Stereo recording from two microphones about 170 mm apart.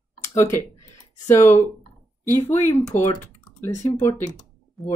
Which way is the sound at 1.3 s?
15° left (ahead or behind).